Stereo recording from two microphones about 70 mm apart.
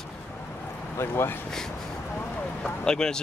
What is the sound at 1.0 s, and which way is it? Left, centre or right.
Speech, left.